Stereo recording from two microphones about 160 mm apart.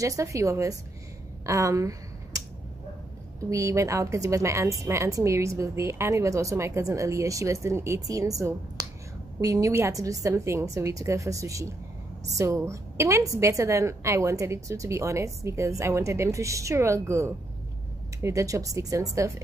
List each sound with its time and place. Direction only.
0.0 s a woman's voice: 20° right (ahead or behind)
1.4 s a sound: 20° right (ahead or behind)
3.3 s a woman's voice: 20° right (ahead or behind)